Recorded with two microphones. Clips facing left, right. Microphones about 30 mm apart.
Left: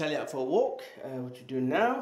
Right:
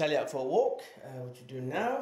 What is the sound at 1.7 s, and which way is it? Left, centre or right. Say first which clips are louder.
Speech: left 4 dB; centre.